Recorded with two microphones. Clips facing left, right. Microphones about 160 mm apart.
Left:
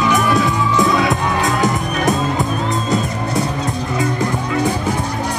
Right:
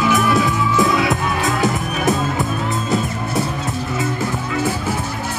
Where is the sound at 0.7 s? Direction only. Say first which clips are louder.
Left 1 dB; 20° left (ahead or behind).